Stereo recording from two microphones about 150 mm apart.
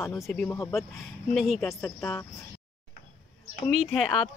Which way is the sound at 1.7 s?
15° left (ahead or behind).